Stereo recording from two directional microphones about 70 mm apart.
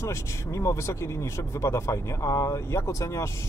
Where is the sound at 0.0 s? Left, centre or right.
Left.